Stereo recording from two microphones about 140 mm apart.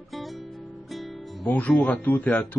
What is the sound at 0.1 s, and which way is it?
Music, centre (ahead or behind).